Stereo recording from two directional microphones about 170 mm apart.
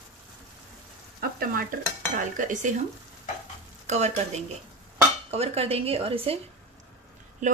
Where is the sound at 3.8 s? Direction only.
40° right (ahead or behind).